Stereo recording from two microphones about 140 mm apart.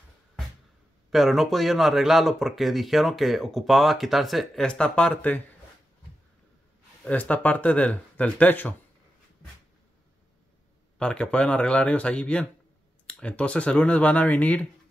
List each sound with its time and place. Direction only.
1.1 s speech: centre (ahead or behind)
7.1 s speech: 10° left (ahead or behind)
11.0 s speech: 5° left (ahead or behind)